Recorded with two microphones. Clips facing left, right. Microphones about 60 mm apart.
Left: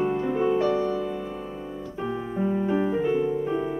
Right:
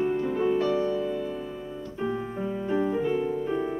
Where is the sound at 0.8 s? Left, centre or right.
Left.